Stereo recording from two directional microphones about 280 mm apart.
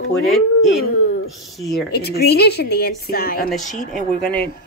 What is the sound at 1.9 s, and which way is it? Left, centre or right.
A woman's voice, left.